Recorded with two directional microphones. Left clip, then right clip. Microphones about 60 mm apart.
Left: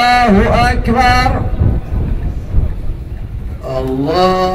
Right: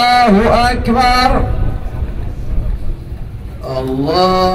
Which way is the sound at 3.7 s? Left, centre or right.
Right.